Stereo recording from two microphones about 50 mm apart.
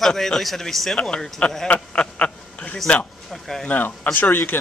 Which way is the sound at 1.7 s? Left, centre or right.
Left.